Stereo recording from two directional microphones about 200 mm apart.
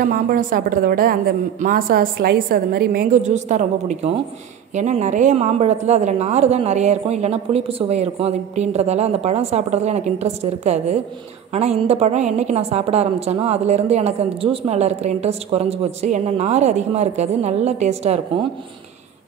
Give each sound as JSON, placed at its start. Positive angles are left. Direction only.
{"t": 0.0, "sound": "a woman's voice", "side_deg": -45}